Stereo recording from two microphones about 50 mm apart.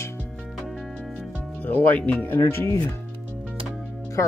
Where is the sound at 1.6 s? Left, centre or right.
Left.